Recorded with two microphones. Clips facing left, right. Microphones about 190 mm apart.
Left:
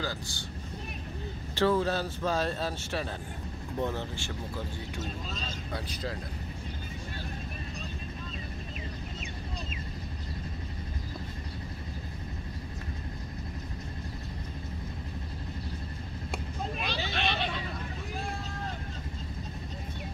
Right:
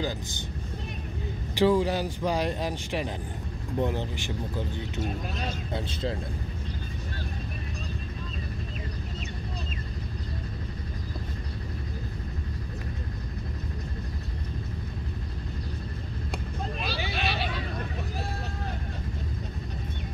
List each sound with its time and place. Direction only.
1.5 s speech: 15° right (ahead or behind)
16.8 s vehicle: 5° right (ahead or behind)